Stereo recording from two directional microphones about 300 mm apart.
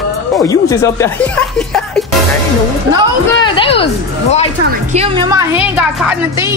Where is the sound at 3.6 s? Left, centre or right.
Centre.